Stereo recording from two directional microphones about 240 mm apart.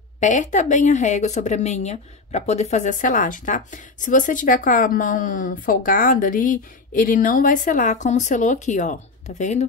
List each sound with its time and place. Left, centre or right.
0.2 s a woman's voice: left